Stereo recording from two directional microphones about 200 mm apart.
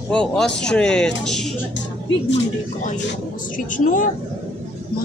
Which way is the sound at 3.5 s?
40° left (ahead or behind).